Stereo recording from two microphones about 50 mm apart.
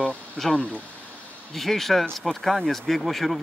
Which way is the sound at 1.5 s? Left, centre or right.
Centre.